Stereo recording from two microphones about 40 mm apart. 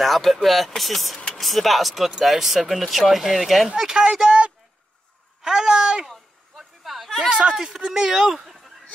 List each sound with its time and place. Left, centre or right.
0.0 s speech: centre
3.7 s speech: centre
5.4 s a sound: centre
6.0 s a sound: centre
7.2 s speech: right
7.5 s speech: centre